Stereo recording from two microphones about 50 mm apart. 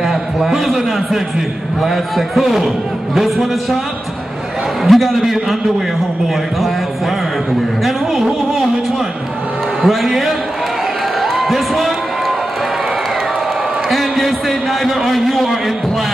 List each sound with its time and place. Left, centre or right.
0.1 s a man's voice: centre
4.8 s a man's voice: centre
7.8 s a man's voice: centre
9.8 s a man's voice: centre
11.3 s a sound: centre
13.8 s a sound: centre
14.9 s a man's voice: centre